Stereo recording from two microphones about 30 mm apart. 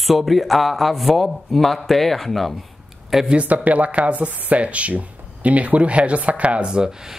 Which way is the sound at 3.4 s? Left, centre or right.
Right.